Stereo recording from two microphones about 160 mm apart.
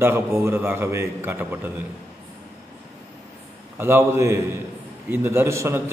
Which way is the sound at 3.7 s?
15° right (ahead or behind).